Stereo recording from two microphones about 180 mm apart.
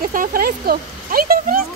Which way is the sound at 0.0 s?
50° right (ahead or behind).